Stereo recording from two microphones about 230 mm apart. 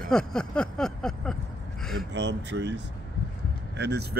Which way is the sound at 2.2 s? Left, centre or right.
Right.